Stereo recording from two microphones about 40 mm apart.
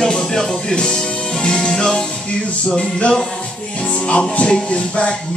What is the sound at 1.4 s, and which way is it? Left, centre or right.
Speech, centre.